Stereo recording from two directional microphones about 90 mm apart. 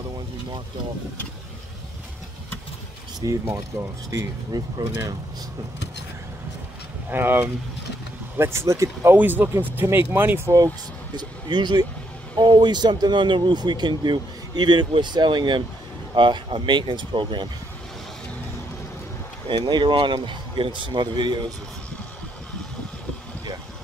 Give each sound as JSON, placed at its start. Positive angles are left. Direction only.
{"t": 3.2, "sound": "speech", "side_deg": -45}
{"t": 7.1, "sound": "speech", "side_deg": -25}
{"t": 9.1, "sound": "speech", "side_deg": -20}
{"t": 11.1, "sound": "speech", "side_deg": -55}
{"t": 19.4, "sound": "speech", "side_deg": -55}